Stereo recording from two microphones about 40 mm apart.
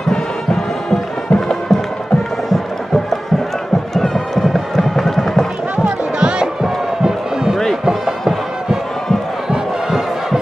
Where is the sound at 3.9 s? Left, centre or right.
Centre.